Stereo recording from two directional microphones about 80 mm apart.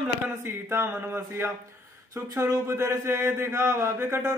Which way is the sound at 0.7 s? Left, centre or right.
Right.